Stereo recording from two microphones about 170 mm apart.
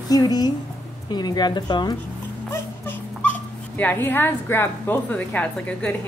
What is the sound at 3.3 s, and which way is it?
Speech, 10° left (ahead or behind).